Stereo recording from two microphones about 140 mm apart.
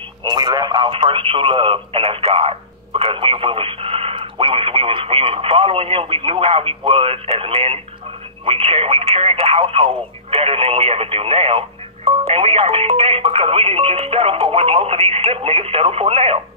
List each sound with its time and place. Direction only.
0.2 s speech: 30° right (ahead or behind); by 16.3 s 45° right (ahead or behind)